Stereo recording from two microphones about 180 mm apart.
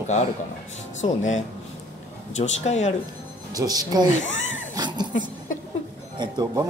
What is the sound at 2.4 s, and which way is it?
Speech, 40° left (ahead or behind).